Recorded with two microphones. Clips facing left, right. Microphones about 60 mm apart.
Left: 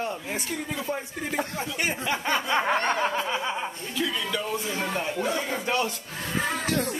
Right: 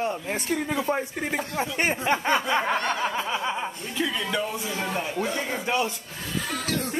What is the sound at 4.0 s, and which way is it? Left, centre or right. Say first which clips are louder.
Speech: right 2 dB; centre.